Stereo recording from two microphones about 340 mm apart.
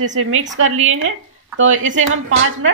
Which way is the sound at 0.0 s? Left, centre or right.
Right.